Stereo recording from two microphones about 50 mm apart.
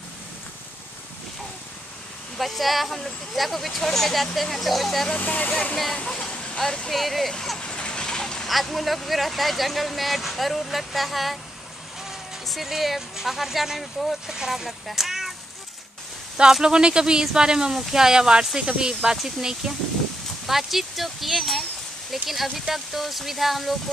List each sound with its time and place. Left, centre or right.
2.3 s speech: centre
5.1 s speech: left
6.9 s speech: centre
7.3 s a sound: centre
8.5 s speech: centre
14.2 s speech: centre
16.6 s speech: centre